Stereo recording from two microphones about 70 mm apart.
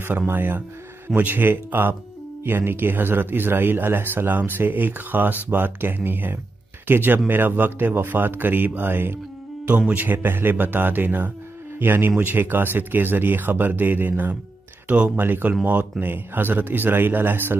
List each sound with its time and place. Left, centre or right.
0.3 s a man's voice: right